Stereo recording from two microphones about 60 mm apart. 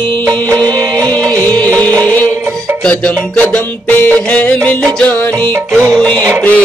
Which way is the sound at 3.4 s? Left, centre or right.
Left.